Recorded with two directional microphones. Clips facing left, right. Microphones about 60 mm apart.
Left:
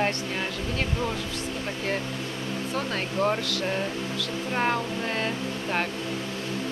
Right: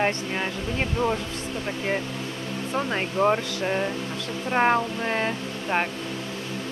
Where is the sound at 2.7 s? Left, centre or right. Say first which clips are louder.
Right 4 dB; right.